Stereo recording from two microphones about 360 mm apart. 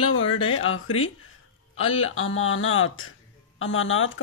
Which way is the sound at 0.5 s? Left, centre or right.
Left.